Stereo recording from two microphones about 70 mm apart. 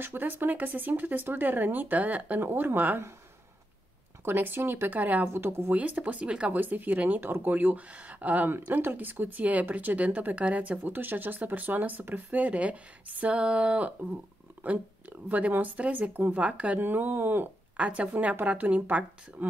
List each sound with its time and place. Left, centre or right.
0.0 s speech: right
4.2 s speech: right
5.3 s speech: right
5.8 s speech: right